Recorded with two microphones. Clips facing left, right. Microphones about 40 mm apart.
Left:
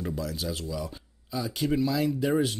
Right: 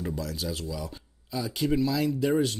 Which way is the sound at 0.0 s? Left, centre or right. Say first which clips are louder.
Even; centre.